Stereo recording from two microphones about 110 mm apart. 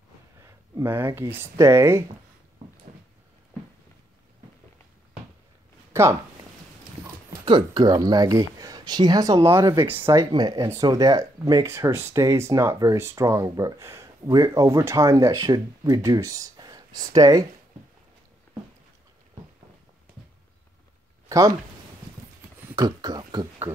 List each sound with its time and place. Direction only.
0.4 s a sound: 25° right (ahead or behind)
1.4 s speech: 25° right (ahead or behind)
7.4 s speech: 45° right (ahead or behind)
9.5 s speech: 25° right (ahead or behind)
10.1 s speech: 35° right (ahead or behind)
21.3 s speech: 30° right (ahead or behind)
22.8 s speech: 40° right (ahead or behind)